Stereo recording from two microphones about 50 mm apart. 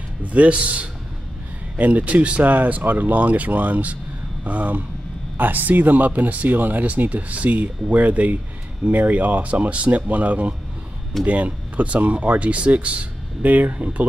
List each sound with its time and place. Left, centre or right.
0.2 s speech: right